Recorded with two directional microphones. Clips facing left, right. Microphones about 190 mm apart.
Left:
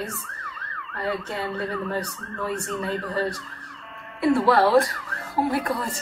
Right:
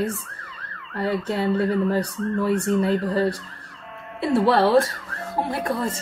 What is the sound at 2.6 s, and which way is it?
Speech, 35° right (ahead or behind).